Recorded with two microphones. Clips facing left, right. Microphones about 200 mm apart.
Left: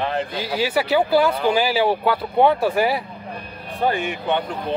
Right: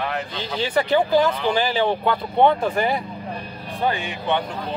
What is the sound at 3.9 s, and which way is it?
Speech, 50° left (ahead or behind).